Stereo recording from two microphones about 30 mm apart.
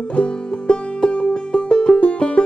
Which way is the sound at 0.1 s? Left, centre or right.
Left.